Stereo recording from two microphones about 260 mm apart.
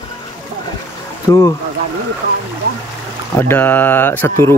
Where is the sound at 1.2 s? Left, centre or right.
Centre.